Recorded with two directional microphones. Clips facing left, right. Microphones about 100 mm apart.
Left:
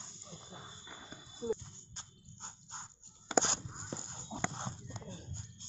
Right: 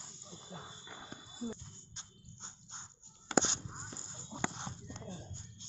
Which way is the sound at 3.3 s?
5° left (ahead or behind).